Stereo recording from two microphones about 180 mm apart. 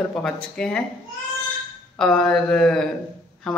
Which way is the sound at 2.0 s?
5° left (ahead or behind).